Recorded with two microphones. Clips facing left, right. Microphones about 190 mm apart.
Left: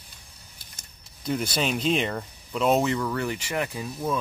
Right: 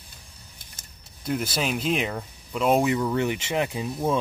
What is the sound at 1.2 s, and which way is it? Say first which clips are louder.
Speech: even; 5° right (ahead or behind).